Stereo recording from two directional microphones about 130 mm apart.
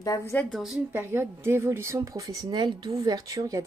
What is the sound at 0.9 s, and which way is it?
A woman's voice, 20° right (ahead or behind).